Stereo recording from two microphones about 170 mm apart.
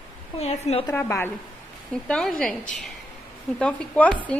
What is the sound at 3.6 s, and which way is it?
Speech, 5° left (ahead or behind).